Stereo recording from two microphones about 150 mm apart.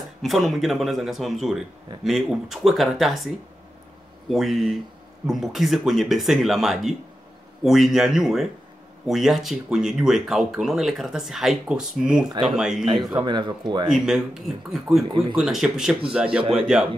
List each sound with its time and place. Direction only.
0.2 s speech: centre (ahead or behind)
12.3 s a man's voice: 30° right (ahead or behind)
12.5 s speech: 5° right (ahead or behind)
13.1 s a man's voice: 30° right (ahead or behind)
13.8 s speech: centre (ahead or behind)
15.0 s a man's voice: 35° right (ahead or behind)
15.3 s speech: 5° right (ahead or behind)